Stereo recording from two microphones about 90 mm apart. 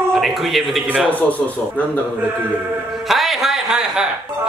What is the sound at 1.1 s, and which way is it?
Speech, 20° left (ahead or behind).